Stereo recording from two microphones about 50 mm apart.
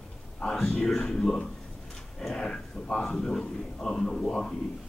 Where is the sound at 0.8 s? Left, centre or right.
Centre.